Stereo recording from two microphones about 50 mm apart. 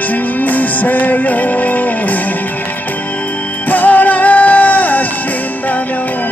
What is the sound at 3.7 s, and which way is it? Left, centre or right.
Music, left.